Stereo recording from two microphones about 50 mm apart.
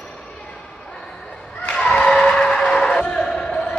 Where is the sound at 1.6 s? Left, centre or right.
Centre.